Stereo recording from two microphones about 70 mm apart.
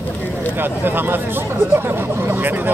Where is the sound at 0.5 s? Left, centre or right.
Right.